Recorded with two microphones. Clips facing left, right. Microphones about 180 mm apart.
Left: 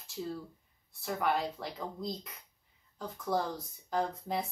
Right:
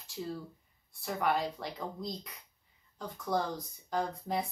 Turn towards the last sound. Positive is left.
turn(degrees=0)  # may be behind; listen again after turning